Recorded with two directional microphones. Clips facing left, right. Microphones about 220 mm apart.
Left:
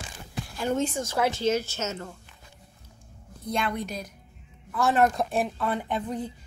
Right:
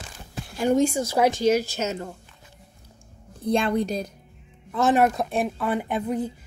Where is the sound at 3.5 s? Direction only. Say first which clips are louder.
Right 7 dB; 30° right (ahead or behind).